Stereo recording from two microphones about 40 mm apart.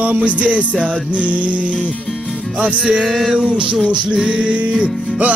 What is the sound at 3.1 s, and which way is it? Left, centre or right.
Music, centre.